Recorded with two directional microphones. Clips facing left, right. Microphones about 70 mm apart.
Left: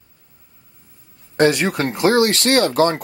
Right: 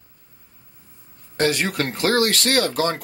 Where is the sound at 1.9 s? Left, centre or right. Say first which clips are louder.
Left 4 dB; centre.